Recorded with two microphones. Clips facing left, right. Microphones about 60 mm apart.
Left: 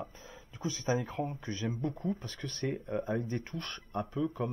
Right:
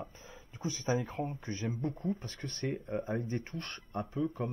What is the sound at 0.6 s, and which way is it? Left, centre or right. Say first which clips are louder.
Speech: left 1 dB; left.